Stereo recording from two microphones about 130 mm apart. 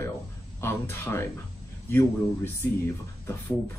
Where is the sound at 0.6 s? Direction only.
20° left (ahead or behind).